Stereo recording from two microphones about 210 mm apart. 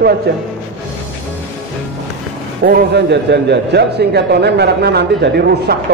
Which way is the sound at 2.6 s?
55° right (ahead or behind).